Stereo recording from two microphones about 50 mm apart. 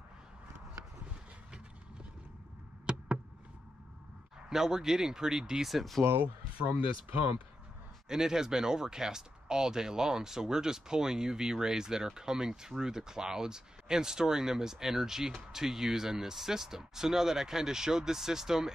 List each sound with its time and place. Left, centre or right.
2.9 s a sound: centre
4.5 s speech: centre
5.7 s speech: centre
6.0 s speech: right
8.1 s speech: centre